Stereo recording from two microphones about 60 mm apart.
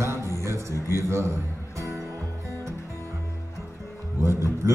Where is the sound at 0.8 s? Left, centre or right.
Right.